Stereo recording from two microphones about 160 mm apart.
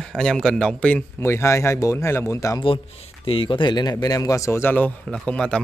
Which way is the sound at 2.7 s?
35° left (ahead or behind).